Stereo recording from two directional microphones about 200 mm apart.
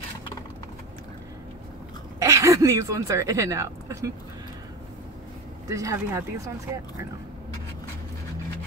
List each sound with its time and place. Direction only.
2.1 s a woman's voice: 15° right (ahead or behind)
5.7 s speech: 15° right (ahead or behind)